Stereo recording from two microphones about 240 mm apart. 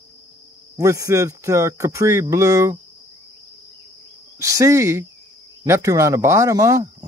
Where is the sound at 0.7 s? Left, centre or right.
Centre.